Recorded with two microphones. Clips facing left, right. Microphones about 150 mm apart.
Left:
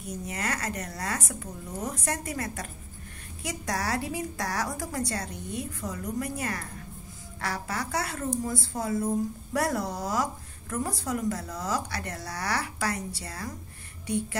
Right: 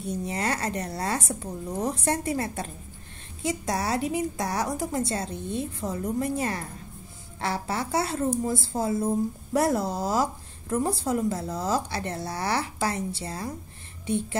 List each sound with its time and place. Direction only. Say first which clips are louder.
0.0 s a woman's voice: right 5 dB; 30° right (ahead or behind)